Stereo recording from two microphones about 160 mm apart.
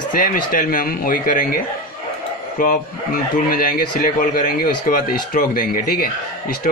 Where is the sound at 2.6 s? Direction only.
60° left (ahead or behind).